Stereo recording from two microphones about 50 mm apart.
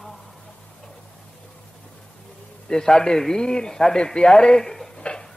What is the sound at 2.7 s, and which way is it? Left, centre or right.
A man's voice, centre.